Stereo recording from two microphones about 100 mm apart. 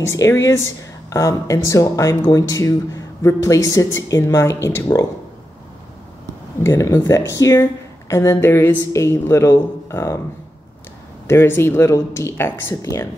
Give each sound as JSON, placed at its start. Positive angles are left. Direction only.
{"t": 0.1, "sound": "a woman's voice", "side_deg": 30}
{"t": 6.6, "sound": "a woman's voice", "side_deg": 30}
{"t": 11.2, "sound": "a woman's voice", "side_deg": 25}